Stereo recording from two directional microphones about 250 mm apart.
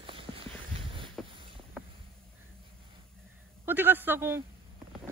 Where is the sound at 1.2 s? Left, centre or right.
Centre.